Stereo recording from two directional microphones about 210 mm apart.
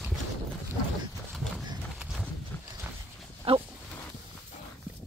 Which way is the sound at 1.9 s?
Centre (ahead or behind).